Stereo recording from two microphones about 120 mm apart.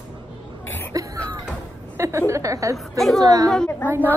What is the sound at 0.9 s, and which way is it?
Music, 30° right (ahead or behind).